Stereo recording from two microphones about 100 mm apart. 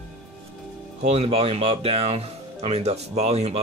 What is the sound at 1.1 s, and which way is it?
Speech, 90° right.